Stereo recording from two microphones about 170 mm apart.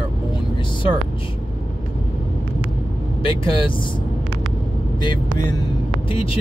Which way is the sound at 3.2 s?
30° left (ahead or behind).